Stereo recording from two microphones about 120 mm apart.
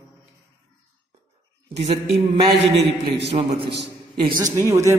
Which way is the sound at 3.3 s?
60° right (ahead or behind).